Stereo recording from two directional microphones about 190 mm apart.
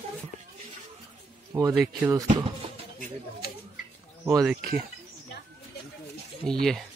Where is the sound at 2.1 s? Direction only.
20° right (ahead or behind).